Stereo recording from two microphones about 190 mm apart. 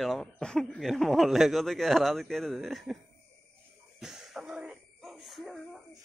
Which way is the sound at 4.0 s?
Centre (ahead or behind).